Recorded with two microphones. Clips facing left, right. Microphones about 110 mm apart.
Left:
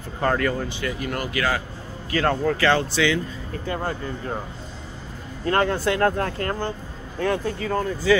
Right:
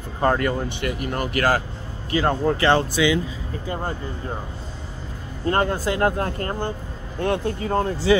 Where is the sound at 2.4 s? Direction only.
25° right (ahead or behind).